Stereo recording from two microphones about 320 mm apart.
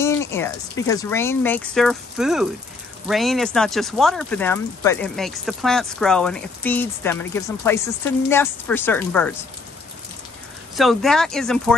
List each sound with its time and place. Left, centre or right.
0.0 s a sound: centre
0.8 s speech: centre
10.8 s speech: centre